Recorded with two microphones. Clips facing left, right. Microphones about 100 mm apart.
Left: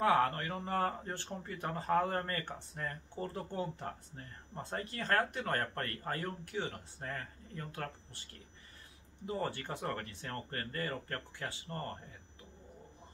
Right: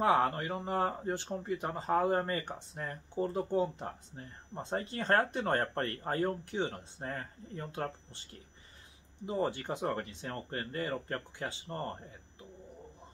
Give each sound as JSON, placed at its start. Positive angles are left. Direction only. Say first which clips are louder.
{"t": 0.0, "sound": "speech", "louder": "right 2 dB", "side_deg": -20}
{"t": 9.2, "sound": "speech", "louder": "right 4 dB", "side_deg": -20}